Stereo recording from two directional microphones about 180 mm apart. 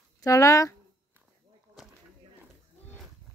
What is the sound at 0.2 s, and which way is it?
Speech, 15° left (ahead or behind).